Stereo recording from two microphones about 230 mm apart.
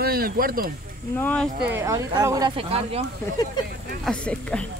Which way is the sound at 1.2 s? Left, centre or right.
Centre.